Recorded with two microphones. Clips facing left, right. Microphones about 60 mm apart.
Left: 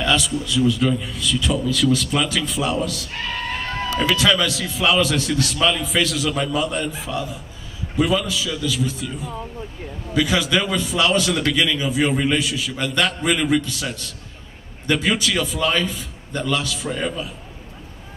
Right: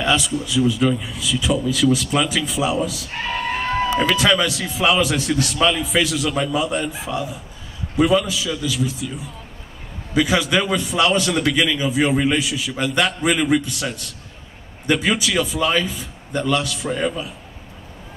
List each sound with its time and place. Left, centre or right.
0.0 s a man's voice: centre
3.1 s a sound: right
4.1 s a man's voice: centre